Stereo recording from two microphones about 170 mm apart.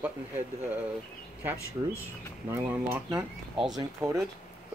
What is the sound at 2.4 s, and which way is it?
Speech, 10° right (ahead or behind).